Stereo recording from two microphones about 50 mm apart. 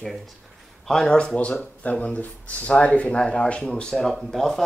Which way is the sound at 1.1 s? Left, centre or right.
Left.